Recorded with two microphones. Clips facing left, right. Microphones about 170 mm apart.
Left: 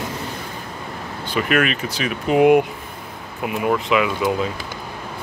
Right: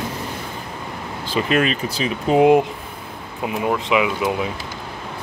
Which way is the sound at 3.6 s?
20° right (ahead or behind).